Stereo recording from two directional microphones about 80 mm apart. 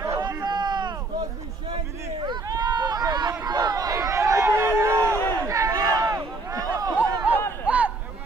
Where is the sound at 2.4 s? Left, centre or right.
Right.